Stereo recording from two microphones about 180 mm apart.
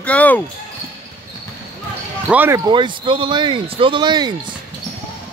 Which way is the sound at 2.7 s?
25° right (ahead or behind).